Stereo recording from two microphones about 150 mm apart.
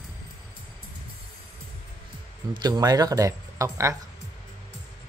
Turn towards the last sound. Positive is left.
turn(degrees=-20)  # may be behind; listen again after turning